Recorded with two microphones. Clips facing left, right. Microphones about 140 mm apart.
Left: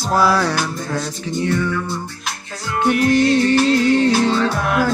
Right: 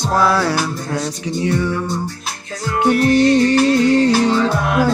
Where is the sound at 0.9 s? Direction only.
15° right (ahead or behind).